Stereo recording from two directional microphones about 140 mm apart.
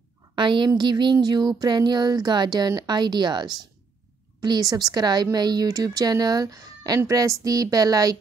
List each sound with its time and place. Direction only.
0.4 s a woman's voice: 35° right (ahead or behind)